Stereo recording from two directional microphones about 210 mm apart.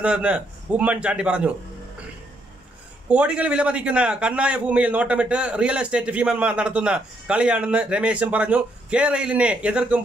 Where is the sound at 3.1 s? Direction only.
5° right (ahead or behind).